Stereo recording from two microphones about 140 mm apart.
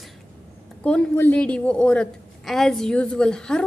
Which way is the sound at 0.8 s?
10° left (ahead or behind).